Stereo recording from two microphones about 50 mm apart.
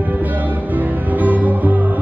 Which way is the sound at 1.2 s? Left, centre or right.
Right.